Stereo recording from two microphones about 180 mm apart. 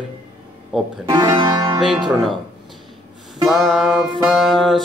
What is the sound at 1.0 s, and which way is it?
Speech, 20° right (ahead or behind).